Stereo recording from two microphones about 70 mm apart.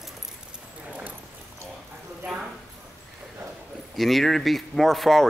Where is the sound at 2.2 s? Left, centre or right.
Centre.